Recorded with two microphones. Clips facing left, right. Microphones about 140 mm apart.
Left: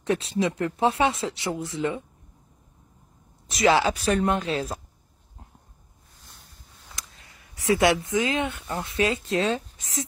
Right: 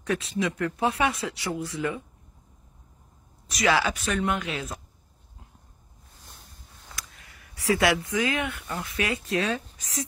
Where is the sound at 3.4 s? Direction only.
25° left (ahead or behind).